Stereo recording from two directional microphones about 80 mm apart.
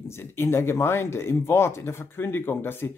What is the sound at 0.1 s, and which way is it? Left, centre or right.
Speech, left.